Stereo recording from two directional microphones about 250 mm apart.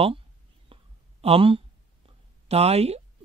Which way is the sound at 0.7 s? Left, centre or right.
Right.